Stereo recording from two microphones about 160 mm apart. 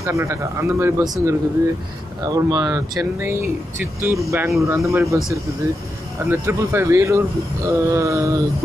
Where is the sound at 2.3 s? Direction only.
20° right (ahead or behind).